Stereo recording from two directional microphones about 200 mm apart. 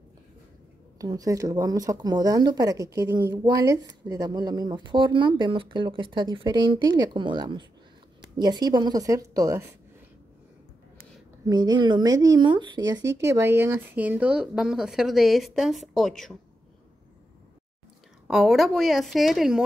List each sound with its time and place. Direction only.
0.9 s a woman's voice: 15° right (ahead or behind)
11.4 s speech: 20° right (ahead or behind); by 16.3 s centre (ahead or behind)
18.2 s speech: centre (ahead or behind)